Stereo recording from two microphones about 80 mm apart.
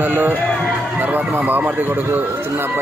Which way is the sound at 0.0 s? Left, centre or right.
Right.